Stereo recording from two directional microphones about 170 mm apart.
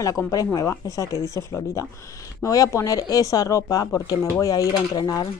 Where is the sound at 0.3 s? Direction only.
20° left (ahead or behind).